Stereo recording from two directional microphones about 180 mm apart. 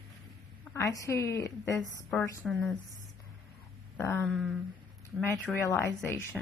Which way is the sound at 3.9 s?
10° left (ahead or behind).